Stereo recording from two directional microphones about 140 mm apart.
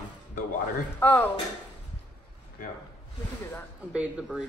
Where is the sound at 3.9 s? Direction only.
5° right (ahead or behind).